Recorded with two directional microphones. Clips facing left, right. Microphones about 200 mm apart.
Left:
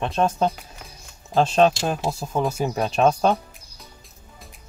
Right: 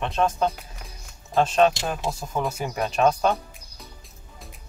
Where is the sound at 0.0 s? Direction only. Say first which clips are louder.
Left 2 dB; 30° left (ahead or behind).